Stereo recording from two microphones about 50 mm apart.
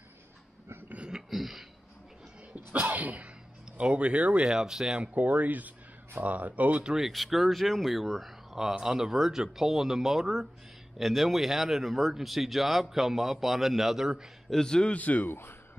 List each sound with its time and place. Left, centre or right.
1.3 s a sound: centre
2.5 s sneeze: right
3.7 s speech: right
4.5 s speech: centre
5.1 s speech: right
6.8 s speech: centre
7.1 s speech: centre
14.5 s a man's voice: centre
14.9 s speech: left